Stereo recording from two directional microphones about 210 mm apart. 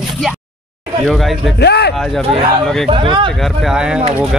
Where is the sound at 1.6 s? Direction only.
50° left (ahead or behind).